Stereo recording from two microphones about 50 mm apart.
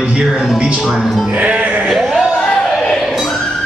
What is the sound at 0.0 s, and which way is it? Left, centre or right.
Music, centre.